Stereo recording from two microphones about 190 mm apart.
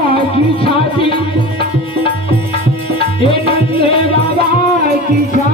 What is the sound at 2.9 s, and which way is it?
Tabla, 30° left (ahead or behind).